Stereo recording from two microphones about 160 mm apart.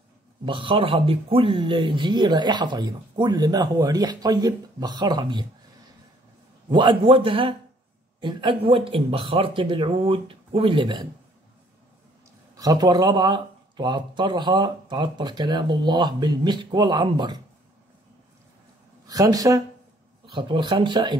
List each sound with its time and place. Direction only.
0.5 s speech: 30° right (ahead or behind)
6.7 s speech: 30° right (ahead or behind)
12.5 s speech: 25° right (ahead or behind)
19.0 s speech: 20° right (ahead or behind)